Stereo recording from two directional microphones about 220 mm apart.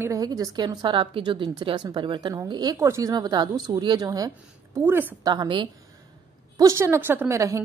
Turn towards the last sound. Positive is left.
turn(degrees=-15)  # may be behind; listen again after turning